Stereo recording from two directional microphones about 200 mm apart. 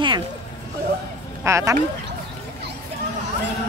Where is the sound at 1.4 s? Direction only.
15° right (ahead or behind).